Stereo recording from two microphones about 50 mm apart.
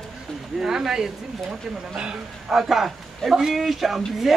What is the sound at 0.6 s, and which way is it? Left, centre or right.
A man's voice, centre.